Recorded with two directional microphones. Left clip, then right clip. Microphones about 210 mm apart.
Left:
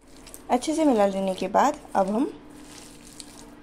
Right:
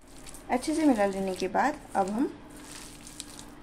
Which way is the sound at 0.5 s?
25° left (ahead or behind).